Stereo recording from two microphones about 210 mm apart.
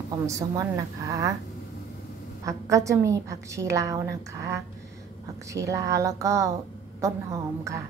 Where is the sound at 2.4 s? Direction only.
15° right (ahead or behind).